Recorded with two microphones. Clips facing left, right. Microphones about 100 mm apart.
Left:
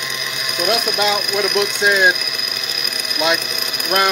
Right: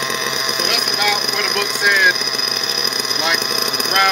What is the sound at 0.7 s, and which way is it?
Speech, 25° left (ahead or behind).